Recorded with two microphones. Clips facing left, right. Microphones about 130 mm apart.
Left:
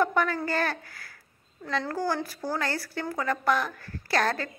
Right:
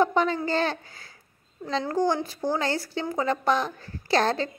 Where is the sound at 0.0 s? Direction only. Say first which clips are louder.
Right 3 dB; 25° right (ahead or behind).